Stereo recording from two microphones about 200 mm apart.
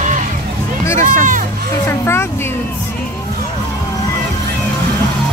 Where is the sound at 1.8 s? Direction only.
10° left (ahead or behind).